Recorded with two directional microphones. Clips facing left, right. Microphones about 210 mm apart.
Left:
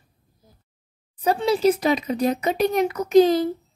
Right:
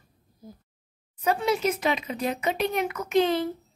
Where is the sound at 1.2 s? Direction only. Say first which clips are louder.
Left 5 dB; 35° left (ahead or behind).